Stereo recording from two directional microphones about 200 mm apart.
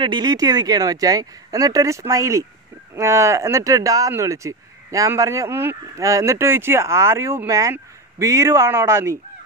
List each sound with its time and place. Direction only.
0.0 s speech: 20° right (ahead or behind)